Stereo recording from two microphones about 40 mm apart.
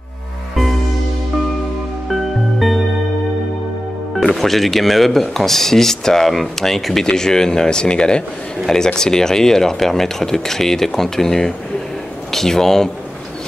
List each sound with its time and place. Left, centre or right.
2.0 s music: centre
4.2 s speech: centre